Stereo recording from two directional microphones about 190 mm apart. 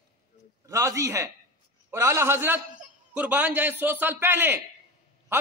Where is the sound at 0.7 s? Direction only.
15° right (ahead or behind).